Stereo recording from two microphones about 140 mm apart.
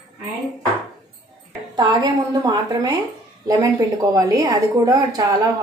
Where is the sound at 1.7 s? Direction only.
30° right (ahead or behind).